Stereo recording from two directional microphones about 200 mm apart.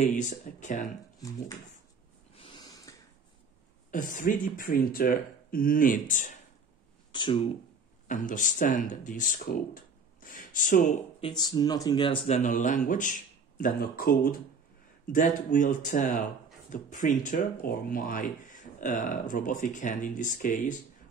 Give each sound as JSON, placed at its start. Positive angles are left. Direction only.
{"t": 0.0, "sound": "speech", "side_deg": 35}
{"t": 2.3, "sound": "a sound", "side_deg": 25}
{"t": 3.9, "sound": "speech", "side_deg": 40}
{"t": 7.1, "sound": "a sound", "side_deg": 25}
{"t": 8.1, "sound": "speech", "side_deg": 40}
{"t": 11.1, "sound": "speech", "side_deg": 25}
{"t": 12.4, "sound": "speech", "side_deg": 40}